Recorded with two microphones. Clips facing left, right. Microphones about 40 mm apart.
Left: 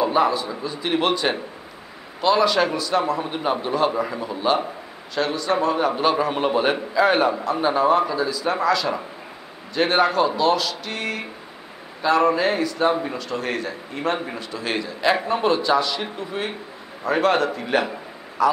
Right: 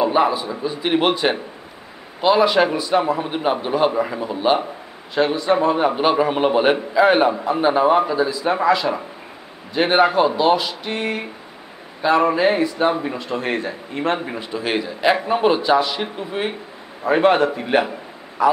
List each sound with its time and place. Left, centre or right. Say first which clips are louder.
0.0 s a man's voice: right 2 dB; centre
14.1 s a man's voice: right 3 dB; centre